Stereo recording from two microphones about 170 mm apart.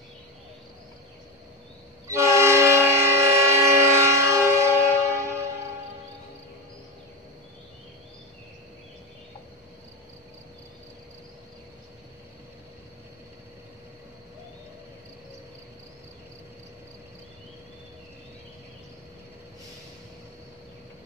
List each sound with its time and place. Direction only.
2.0 s train: 15° right (ahead or behind)